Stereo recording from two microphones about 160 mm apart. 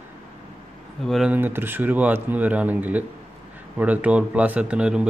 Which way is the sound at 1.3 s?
15° right (ahead or behind).